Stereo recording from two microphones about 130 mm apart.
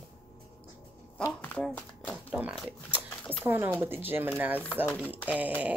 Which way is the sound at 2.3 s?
Centre (ahead or behind).